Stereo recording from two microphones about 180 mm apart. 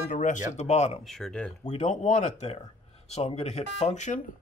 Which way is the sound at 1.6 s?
35° left (ahead or behind).